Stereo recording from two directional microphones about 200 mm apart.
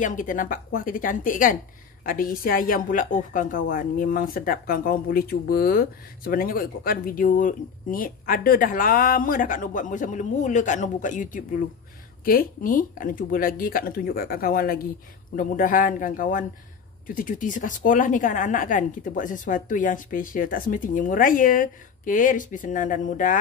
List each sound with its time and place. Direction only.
0.0 s a woman's voice: 40° left (ahead or behind)